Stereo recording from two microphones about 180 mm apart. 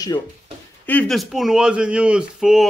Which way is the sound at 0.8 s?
5° left (ahead or behind).